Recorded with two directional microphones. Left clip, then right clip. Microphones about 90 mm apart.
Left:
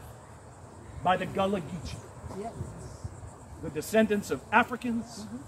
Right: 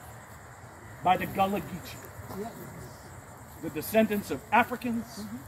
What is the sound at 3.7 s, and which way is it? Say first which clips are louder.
Speech: even; 75° left (ahead or behind).